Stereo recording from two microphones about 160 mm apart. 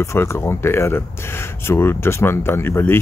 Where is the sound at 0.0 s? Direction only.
15° left (ahead or behind).